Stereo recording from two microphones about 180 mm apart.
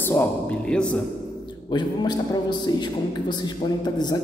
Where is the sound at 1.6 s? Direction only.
25° left (ahead or behind).